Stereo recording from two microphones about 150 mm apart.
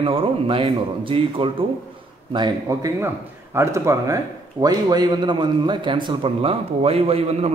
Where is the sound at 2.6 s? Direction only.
20° right (ahead or behind).